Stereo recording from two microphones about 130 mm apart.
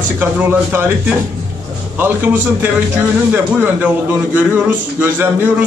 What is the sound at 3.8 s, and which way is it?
A man's voice, 10° right (ahead or behind).